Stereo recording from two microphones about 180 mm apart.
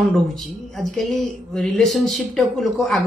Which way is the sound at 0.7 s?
Centre (ahead or behind).